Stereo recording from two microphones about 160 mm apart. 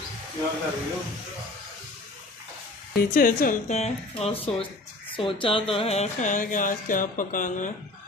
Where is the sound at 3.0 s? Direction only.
60° left (ahead or behind).